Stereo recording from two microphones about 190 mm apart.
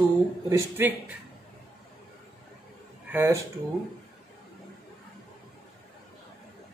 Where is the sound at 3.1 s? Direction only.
10° right (ahead or behind).